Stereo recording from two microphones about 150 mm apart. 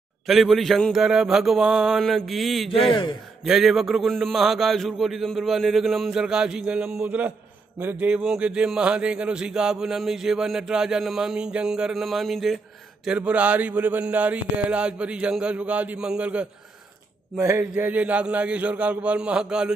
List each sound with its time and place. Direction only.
0.3 s a man's voice: centre (ahead or behind)
2.9 s a man's voice: 30° left (ahead or behind)
3.4 s a man's voice: centre (ahead or behind)